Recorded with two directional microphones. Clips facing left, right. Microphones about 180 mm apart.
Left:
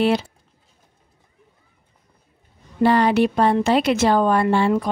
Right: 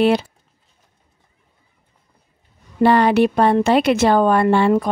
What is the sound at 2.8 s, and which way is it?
A woman's voice, 60° right (ahead or behind).